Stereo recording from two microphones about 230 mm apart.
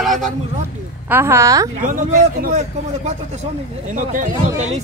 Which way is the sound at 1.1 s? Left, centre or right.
Centre.